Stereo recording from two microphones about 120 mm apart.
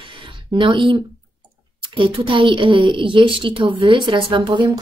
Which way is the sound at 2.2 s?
45° right (ahead or behind).